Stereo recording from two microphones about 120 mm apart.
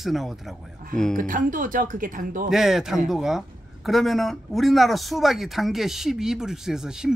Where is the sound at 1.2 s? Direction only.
90° right.